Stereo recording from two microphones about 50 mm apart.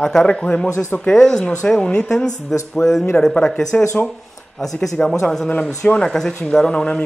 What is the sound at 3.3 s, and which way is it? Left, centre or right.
Speech, centre.